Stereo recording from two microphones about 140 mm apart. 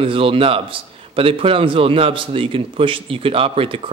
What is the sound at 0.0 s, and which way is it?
A man's voice, 40° right (ahead or behind).